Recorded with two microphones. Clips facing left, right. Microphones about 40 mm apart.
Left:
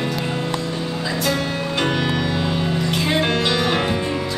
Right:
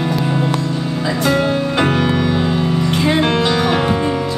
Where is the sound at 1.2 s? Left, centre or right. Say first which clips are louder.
Right 8 dB; centre.